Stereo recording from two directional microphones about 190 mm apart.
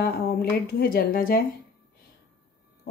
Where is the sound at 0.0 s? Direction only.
55° left (ahead or behind).